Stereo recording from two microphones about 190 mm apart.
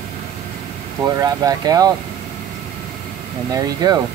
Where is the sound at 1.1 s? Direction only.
20° right (ahead or behind).